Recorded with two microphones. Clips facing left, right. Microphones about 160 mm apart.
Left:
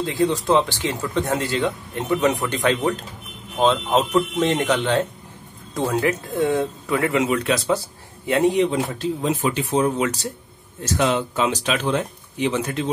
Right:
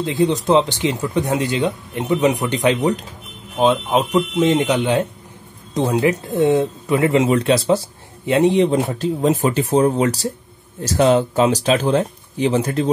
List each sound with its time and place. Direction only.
0.0 s speech: 20° right (ahead or behind)
8.6 s speech: 45° right (ahead or behind)